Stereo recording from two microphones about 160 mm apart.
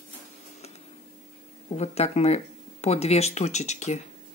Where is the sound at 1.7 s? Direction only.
40° left (ahead or behind).